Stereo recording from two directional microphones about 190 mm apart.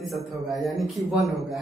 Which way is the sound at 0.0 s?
Centre (ahead or behind).